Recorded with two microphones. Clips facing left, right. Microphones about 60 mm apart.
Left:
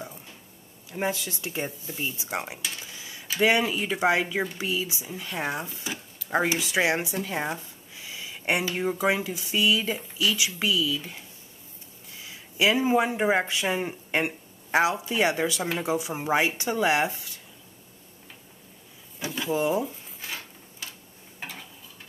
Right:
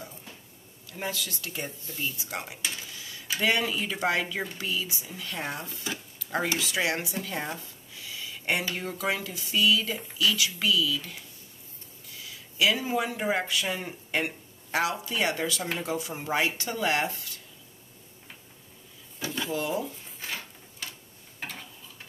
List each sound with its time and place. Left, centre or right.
0.8 s speech: left
2.8 s a sound: centre
3.3 s speech: centre
19.1 s drawer open or close: centre
19.5 s speech: centre